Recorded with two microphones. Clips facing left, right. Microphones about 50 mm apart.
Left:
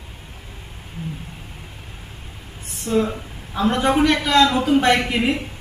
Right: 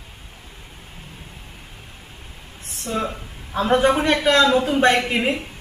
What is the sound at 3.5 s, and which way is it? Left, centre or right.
Speech, centre.